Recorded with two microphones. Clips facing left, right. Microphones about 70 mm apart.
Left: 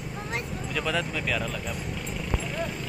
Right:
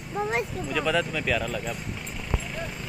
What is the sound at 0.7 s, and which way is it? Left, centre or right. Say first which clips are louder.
Speech: right 3 dB; centre.